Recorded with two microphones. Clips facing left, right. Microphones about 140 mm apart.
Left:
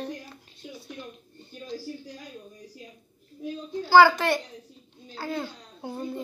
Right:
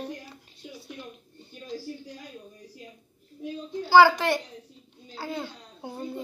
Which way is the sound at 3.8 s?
10° right (ahead or behind).